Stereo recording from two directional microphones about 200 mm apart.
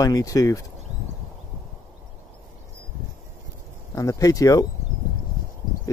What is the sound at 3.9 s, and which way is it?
Speech, 15° left (ahead or behind).